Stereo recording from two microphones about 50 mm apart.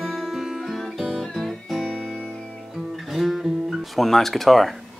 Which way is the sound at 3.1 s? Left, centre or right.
Centre.